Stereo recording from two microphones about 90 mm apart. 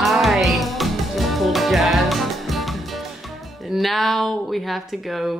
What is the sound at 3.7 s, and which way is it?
Speech, centre (ahead or behind).